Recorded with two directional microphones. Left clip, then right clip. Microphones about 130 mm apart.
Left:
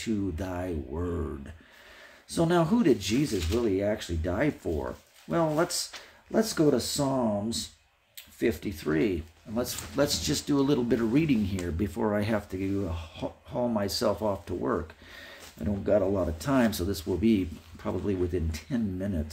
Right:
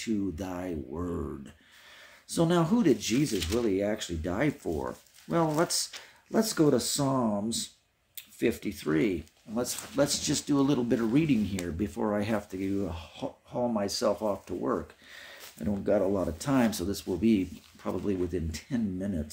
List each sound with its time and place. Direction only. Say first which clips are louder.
0.0 s speech: left 1 dB; 15° right (ahead or behind)
2.2 s speech: left 1 dB; 20° right (ahead or behind)
11.8 s speech: left 2 dB; 5° right (ahead or behind)
15.1 s speech: left 1 dB; 20° right (ahead or behind)